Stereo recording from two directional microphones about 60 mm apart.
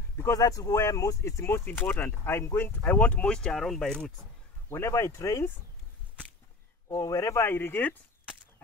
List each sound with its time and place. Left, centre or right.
0.3 s speech: left
1.6 s speech: left; by 4.0 s centre
4.6 s speech: left
7.0 s speech: left
7.4 s speech: left